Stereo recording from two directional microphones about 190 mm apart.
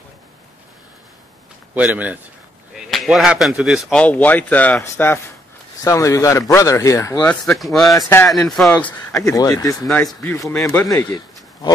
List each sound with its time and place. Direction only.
1.8 s a man's voice: 10° right (ahead or behind); by 7.5 s 15° left (ahead or behind)
7.5 s speech: centre (ahead or behind)
8.7 s speech: 15° left (ahead or behind)
9.8 s speech: 5° left (ahead or behind); by 11.7 s 20° left (ahead or behind)